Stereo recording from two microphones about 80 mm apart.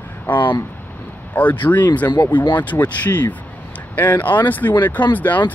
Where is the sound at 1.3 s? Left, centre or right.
Left.